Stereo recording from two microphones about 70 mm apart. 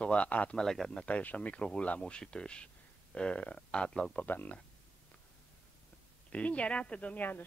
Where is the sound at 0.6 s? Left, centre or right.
Centre.